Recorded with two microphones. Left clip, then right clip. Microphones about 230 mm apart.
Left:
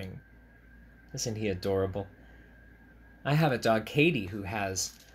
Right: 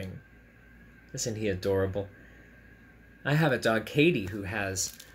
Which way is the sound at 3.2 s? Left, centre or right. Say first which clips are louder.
Right 1 dB; centre.